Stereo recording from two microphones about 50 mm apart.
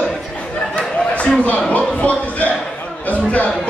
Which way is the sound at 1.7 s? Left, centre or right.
Left.